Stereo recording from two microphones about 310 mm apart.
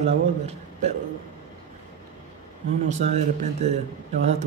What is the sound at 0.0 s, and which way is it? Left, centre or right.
Speech, right.